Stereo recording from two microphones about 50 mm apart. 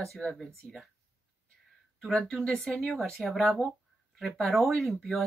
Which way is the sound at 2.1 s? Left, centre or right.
Centre.